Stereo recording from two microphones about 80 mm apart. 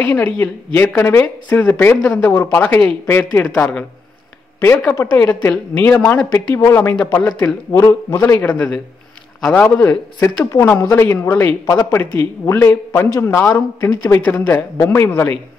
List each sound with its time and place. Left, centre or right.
0.0 s a woman's voice: centre
4.6 s a woman's voice: left
6.5 s a woman's voice: left
7.4 s a man's voice: left
8.1 s a woman's voice: left
9.8 s a woman's voice: left
14.8 s a man's voice: left